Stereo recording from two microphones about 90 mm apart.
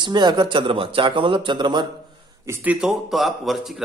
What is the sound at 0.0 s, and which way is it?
Speech, 55° right (ahead or behind).